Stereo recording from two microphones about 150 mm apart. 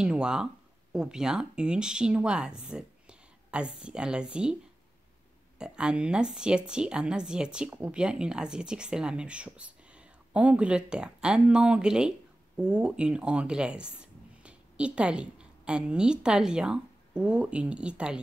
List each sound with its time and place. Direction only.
0.0 s speech: 5° right (ahead or behind)
5.6 s speech: 5° right (ahead or behind)